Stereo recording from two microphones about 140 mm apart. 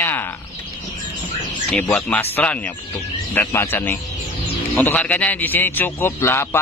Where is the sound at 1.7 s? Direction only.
5° left (ahead or behind).